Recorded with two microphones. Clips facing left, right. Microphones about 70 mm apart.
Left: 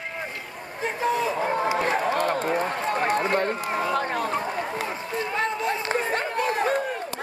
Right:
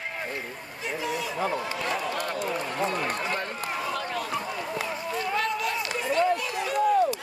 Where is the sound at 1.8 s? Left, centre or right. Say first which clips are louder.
Left 6 dB; left.